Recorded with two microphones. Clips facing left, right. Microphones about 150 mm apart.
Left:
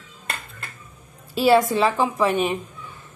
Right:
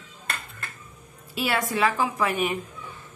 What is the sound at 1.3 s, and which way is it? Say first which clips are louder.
A woman's voice: left 10 dB; 30° left (ahead or behind).